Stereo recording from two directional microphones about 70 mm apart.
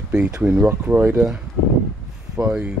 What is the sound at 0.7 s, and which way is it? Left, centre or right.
Speech, right.